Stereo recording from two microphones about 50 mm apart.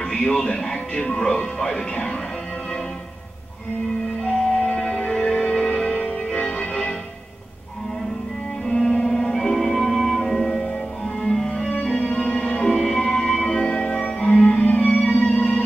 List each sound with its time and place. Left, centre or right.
0.0 s speech: centre
4.3 s music: centre
6.3 s music: left
8.6 s music: centre